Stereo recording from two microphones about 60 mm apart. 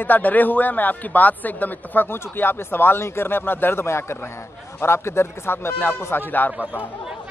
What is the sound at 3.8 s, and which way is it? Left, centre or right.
Speech, left.